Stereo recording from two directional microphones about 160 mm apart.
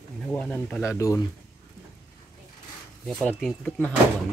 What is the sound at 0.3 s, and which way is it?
Speech, 5° left (ahead or behind).